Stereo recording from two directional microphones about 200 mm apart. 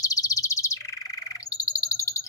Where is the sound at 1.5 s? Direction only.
15° left (ahead or behind).